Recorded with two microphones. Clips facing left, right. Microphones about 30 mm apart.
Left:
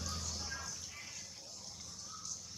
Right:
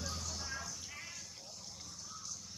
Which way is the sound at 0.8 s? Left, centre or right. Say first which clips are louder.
Right 1 dB; centre.